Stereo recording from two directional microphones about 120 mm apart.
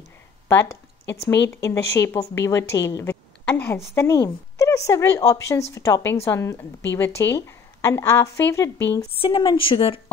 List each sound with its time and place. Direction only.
0.5 s a woman's voice: 20° left (ahead or behind)
9.1 s a woman's voice: 50° left (ahead or behind)